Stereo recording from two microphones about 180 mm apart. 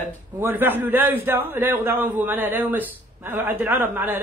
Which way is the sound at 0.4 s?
10° right (ahead or behind).